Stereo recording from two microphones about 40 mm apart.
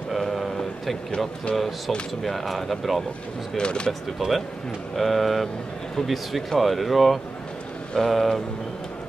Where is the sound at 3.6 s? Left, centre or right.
Left.